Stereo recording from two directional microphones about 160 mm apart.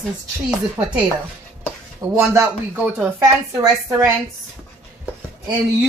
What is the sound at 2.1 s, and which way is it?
A woman's voice, 15° right (ahead or behind).